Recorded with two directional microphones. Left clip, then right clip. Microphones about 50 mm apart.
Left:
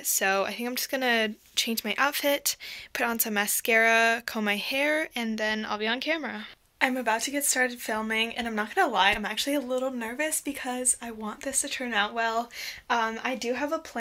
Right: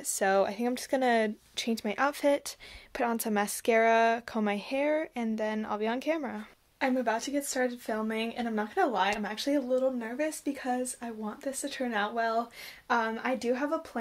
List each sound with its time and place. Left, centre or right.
0.2 s speech: right
3.0 s speech: right
4.7 s speech: right
5.1 s speech: right
5.9 s speech: right
6.8 s speech: centre
8.5 s speech: centre
12.8 s a woman's voice: right